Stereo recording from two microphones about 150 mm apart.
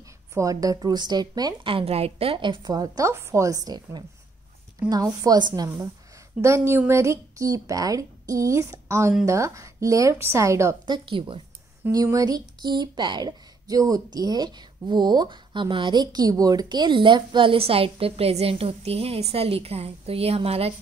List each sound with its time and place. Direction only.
0.3 s a woman's voice: 20° right (ahead or behind)
10.9 s speech: 35° right (ahead or behind)
11.9 s speech: 25° right (ahead or behind); by 20.7 s 40° right (ahead or behind)